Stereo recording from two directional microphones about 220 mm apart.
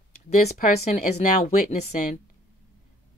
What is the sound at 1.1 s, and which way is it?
Speech, 40° left (ahead or behind).